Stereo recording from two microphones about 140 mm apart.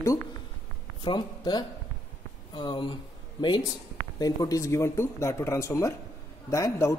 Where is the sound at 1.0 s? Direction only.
30° left (ahead or behind).